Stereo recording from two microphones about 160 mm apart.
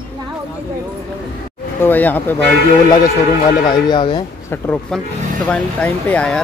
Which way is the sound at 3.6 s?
25° left (ahead or behind).